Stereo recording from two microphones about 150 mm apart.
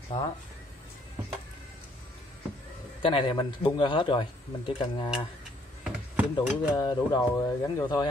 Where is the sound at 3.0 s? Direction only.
35° left (ahead or behind).